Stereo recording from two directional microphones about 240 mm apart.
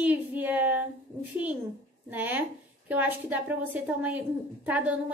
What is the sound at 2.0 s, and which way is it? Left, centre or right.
A woman's voice, centre.